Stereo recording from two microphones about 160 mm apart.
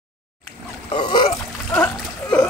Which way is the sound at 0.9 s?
30° left (ahead or behind).